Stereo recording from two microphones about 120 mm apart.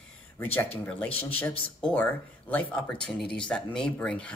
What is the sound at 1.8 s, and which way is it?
Speech, 10° left (ahead or behind).